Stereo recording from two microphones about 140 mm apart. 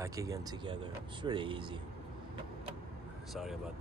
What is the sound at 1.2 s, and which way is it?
Speech, 35° right (ahead or behind).